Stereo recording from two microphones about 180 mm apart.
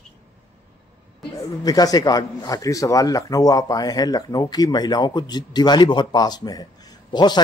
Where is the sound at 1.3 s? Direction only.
20° left (ahead or behind).